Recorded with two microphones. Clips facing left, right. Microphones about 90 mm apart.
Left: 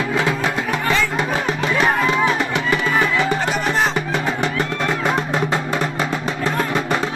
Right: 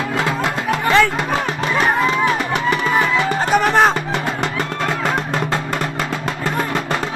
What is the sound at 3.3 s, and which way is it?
Music, 50° right (ahead or behind).